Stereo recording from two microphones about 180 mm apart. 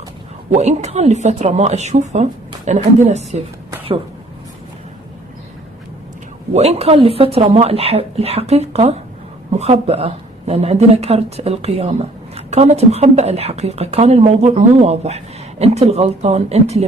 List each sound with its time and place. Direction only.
0.5 s speech: 40° right (ahead or behind)
6.5 s speech: 35° right (ahead or behind)